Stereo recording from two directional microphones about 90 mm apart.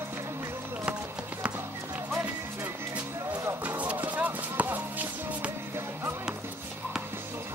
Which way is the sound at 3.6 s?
15° right (ahead or behind).